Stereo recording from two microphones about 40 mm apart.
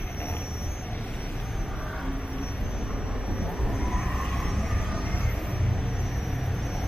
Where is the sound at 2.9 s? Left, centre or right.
Right; by 4.7 s centre.